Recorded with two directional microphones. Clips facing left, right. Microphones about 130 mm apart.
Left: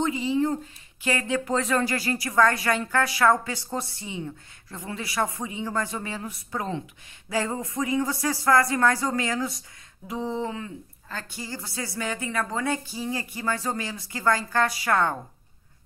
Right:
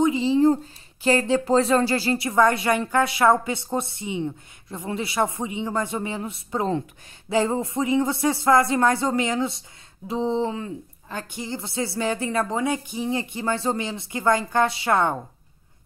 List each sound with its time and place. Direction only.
0.0 s a woman's voice: 25° right (ahead or behind)
11.1 s a woman's voice: 20° right (ahead or behind)